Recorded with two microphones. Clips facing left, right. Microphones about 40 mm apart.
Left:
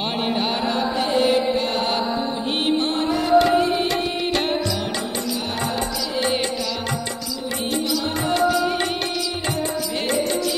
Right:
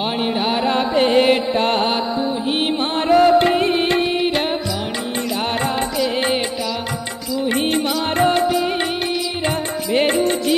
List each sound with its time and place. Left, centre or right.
0.0 s a sound: centre
0.7 s music: right
3.0 s music: right; by 4.6 s centre
5.6 s music: right
7.3 s music: right